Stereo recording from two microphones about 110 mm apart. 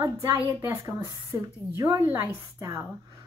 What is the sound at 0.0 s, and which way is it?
Speech, 30° right (ahead or behind).